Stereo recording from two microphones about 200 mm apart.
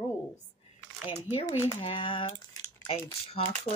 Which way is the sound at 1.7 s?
30° left (ahead or behind).